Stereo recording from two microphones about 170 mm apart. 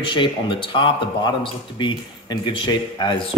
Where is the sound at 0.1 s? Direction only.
30° left (ahead or behind).